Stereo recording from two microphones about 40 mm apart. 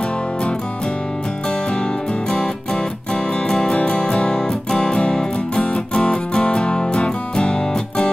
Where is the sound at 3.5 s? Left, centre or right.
Left.